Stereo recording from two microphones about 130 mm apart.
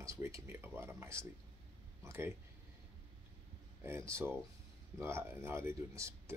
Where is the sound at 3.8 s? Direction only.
20° right (ahead or behind).